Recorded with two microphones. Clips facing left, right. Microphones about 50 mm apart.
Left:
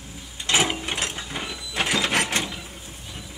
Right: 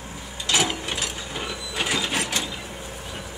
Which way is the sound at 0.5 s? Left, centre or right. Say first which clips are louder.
Left 1 dB; left.